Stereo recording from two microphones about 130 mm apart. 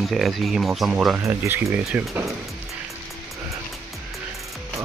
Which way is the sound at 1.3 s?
20° right (ahead or behind).